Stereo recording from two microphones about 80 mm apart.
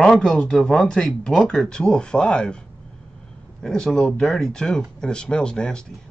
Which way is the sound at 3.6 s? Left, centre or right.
Centre.